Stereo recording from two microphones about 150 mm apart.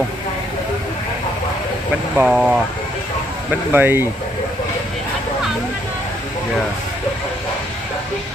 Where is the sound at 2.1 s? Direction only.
10° right (ahead or behind).